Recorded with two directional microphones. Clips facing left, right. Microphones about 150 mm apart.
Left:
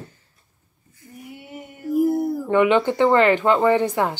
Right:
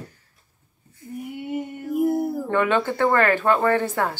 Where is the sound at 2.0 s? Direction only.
Centre (ahead or behind).